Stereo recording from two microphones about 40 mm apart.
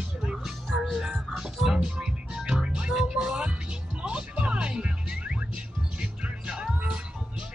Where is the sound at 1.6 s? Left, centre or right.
Centre.